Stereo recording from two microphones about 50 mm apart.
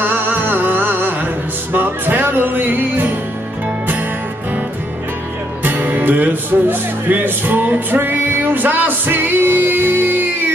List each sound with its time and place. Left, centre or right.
0.0 s music: right
5.6 s music: right